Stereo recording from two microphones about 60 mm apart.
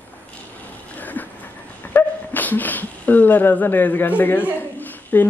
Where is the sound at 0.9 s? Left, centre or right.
Left.